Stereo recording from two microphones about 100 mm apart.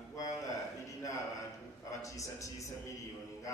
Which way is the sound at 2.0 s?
30° left (ahead or behind).